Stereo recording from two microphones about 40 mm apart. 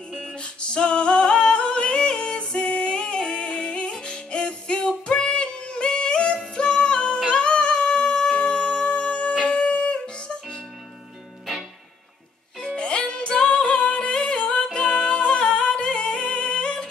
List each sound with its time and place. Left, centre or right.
0.4 s singing: left
7.2 s music: left
12.5 s music: left